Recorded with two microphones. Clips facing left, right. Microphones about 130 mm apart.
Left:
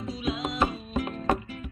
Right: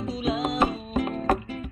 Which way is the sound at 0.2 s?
35° right (ahead or behind).